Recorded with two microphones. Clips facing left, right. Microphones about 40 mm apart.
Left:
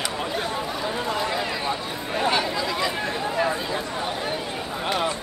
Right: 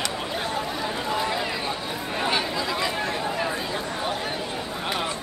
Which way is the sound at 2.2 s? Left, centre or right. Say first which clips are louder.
Left 3 dB; centre.